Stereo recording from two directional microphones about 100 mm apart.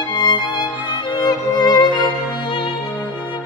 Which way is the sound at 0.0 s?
45° left (ahead or behind).